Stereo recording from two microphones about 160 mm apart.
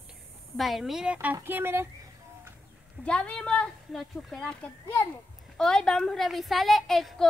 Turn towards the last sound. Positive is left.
turn(degrees=0)  # may be behind; listen again after turning